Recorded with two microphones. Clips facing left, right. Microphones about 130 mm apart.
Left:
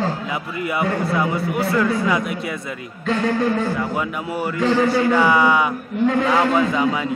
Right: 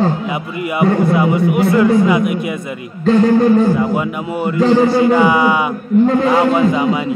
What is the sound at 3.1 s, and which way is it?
Speech, 35° right (ahead or behind).